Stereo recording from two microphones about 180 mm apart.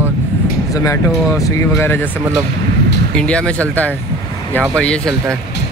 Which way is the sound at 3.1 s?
5° left (ahead or behind).